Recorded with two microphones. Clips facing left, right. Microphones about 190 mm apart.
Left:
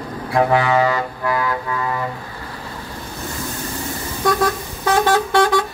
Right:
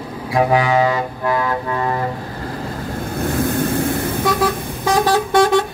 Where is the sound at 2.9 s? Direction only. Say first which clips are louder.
Right 11 dB; 55° right (ahead or behind).